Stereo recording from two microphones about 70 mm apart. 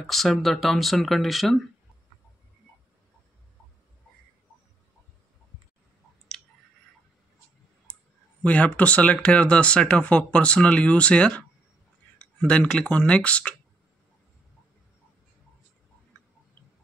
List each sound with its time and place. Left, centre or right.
0.0 s speech: centre
7.8 s speech: centre